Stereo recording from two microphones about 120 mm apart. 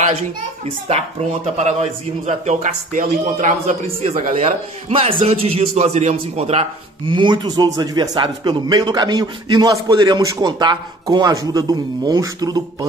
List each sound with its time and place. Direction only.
0.7 s speech: 65° right (ahead or behind)
7.1 s a man's voice: 40° right (ahead or behind)